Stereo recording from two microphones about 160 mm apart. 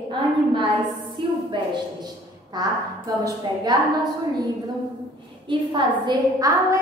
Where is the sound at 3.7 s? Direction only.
25° right (ahead or behind).